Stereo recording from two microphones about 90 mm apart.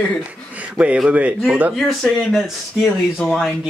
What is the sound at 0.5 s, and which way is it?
A man's voice, 15° right (ahead or behind).